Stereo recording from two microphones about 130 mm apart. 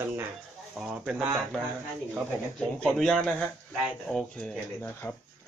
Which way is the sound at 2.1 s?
Centre (ahead or behind).